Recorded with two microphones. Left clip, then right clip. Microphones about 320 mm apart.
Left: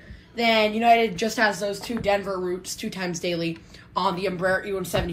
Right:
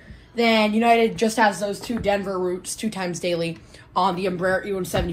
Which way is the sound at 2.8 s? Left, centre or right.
Centre.